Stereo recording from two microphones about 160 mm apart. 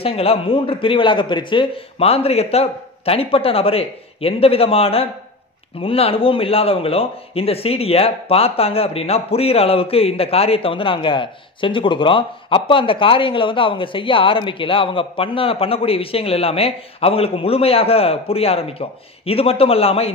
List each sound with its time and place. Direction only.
0.0 s a man's voice: 40° left (ahead or behind)